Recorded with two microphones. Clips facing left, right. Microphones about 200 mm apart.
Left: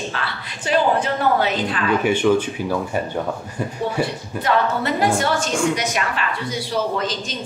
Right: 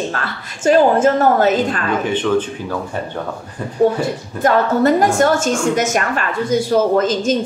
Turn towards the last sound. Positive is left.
turn(degrees=-45)  # may be behind; listen again after turning